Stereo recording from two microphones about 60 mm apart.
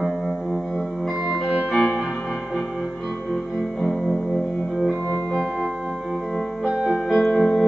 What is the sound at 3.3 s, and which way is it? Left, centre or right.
Music, centre.